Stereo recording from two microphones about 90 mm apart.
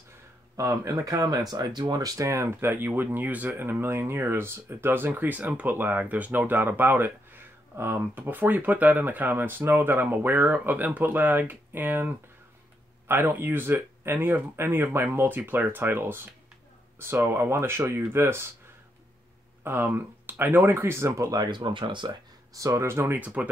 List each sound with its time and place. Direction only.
0.6 s speech: 35° right (ahead or behind)
19.6 s speech: 25° right (ahead or behind)
21.4 s speech: 60° right (ahead or behind)
22.6 s speech: 35° right (ahead or behind); by 23.5 s 15° right (ahead or behind)